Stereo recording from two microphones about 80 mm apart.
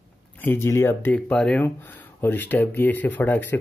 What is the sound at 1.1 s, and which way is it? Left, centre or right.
Speech, centre.